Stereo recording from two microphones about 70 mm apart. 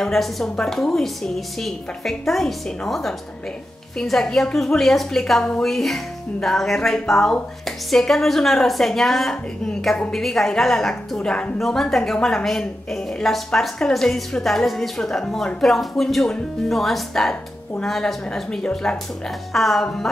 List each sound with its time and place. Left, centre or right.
0.0 s a woman's voice: centre